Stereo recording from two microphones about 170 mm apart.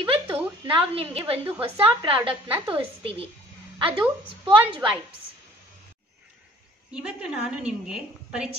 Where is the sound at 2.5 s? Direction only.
30° right (ahead or behind).